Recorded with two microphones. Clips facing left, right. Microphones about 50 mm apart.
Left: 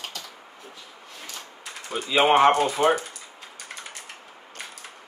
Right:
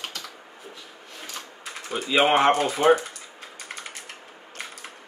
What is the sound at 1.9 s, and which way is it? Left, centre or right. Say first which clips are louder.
Speech: left 1 dB; centre.